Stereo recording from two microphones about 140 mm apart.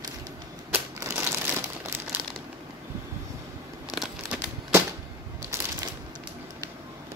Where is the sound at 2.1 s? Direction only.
15° right (ahead or behind).